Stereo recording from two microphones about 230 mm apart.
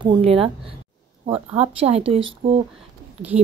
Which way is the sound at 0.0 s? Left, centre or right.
Right.